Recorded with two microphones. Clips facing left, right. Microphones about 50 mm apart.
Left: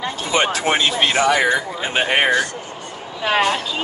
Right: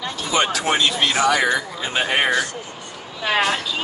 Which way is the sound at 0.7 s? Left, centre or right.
Left.